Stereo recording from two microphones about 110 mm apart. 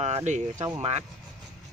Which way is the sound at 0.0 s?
90° right.